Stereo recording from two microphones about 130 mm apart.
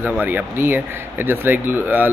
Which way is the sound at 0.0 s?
15° right (ahead or behind).